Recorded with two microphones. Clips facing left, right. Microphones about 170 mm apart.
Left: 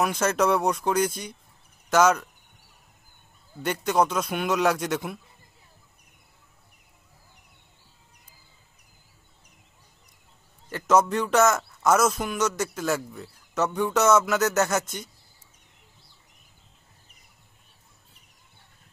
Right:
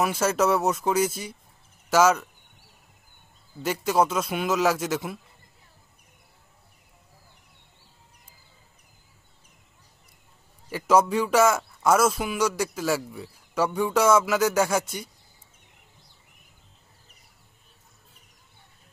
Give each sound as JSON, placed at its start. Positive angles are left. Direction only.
{"t": 0.0, "sound": "a man's voice", "side_deg": -5}
{"t": 3.6, "sound": "a man's voice", "side_deg": -5}
{"t": 10.7, "sound": "a man's voice", "side_deg": -10}